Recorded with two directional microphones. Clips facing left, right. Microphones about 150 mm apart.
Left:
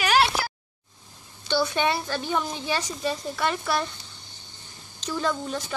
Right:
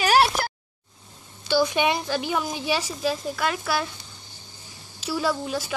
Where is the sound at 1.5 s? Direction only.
10° right (ahead or behind).